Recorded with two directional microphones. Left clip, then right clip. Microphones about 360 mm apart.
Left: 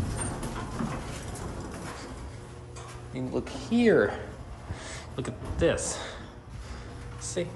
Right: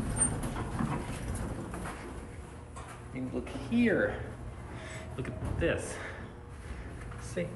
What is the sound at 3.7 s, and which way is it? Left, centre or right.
Speech, left.